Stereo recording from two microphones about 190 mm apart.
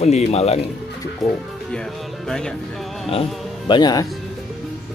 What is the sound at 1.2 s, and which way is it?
Speech, centre (ahead or behind).